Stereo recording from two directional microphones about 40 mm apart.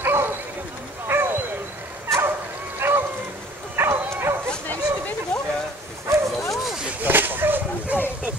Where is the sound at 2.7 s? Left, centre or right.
Right.